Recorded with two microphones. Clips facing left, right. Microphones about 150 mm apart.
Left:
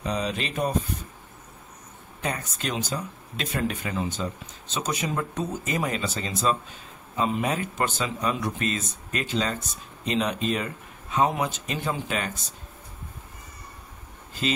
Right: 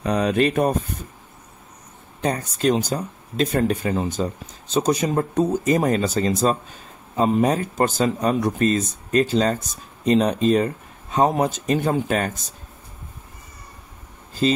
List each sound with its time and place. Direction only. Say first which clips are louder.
0.0 s speech: right 9 dB; 60° right (ahead or behind)
2.2 s speech: right 10 dB; 35° right (ahead or behind)
14.4 s speech: right 7 dB; 35° right (ahead or behind)